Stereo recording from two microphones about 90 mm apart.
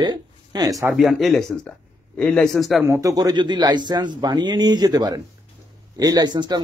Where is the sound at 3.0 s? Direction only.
40° right (ahead or behind).